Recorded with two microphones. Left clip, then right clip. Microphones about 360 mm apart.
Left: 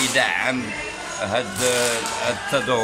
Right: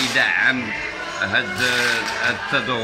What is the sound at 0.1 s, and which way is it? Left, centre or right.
Speech, centre.